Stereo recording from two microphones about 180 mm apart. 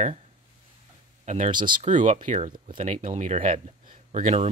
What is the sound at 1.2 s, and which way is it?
Speech, 40° right (ahead or behind).